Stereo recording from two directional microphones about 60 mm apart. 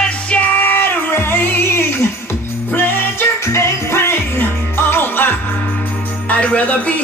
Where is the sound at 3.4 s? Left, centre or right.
Left.